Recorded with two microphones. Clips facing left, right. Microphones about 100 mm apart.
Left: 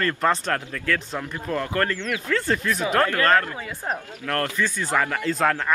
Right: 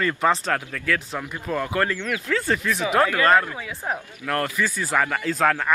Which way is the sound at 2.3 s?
Centre (ahead or behind).